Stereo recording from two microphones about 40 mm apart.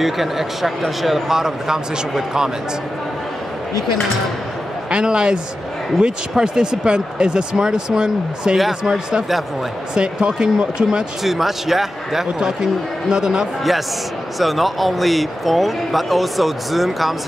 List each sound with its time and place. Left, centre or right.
0.0 s a man's voice: centre
4.9 s speech: right
11.2 s speech: centre
14.4 s a man's voice: centre